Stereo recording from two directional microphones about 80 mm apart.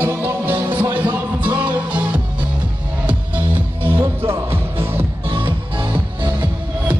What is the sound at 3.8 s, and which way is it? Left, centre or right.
Music, right.